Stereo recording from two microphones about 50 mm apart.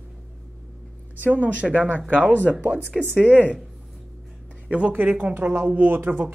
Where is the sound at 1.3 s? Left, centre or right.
Right.